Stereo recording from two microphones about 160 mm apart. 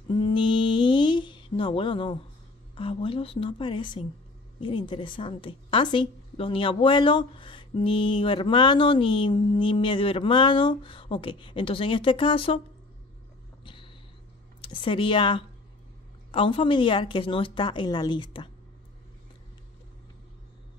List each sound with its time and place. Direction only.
0.1 s mantra: 30° left (ahead or behind)
2.7 s a woman's voice: 30° left (ahead or behind)
14.6 s a woman's voice: 30° left (ahead or behind)